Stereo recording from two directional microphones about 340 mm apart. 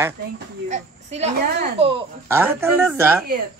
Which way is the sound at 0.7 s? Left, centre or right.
Centre.